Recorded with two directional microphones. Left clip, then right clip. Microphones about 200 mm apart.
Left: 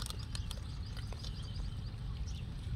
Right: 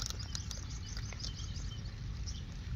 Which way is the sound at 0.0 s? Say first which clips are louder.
Right 3 dB; 25° left (ahead or behind).